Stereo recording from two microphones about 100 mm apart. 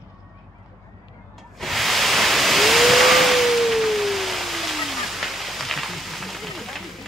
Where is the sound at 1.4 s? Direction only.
Centre (ahead or behind).